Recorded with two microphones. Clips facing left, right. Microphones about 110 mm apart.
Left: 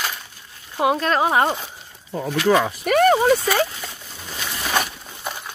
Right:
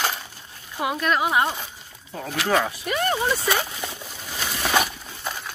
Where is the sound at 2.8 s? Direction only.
75° left (ahead or behind).